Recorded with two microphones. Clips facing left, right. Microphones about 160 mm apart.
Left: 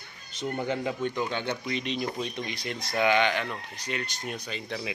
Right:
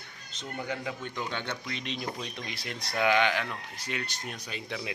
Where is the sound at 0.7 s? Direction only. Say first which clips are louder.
Left 5 dB; 25° left (ahead or behind).